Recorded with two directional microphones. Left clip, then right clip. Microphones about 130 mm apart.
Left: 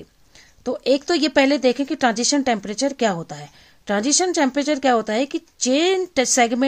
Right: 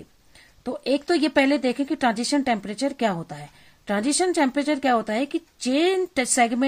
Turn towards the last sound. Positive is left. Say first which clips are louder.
# left 4 dB
turn(degrees=30)  # may be behind; listen again after turning